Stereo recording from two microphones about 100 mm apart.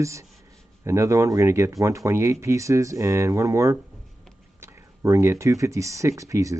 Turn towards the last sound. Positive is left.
turn(degrees=-30)  # may be behind; listen again after turning